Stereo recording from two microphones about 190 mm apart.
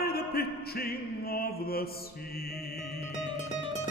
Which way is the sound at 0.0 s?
55° left (ahead or behind).